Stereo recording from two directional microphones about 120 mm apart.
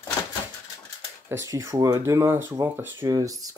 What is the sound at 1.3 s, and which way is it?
Speech, 25° right (ahead or behind).